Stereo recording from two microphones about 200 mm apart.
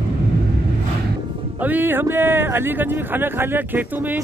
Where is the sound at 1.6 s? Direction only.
10° right (ahead or behind).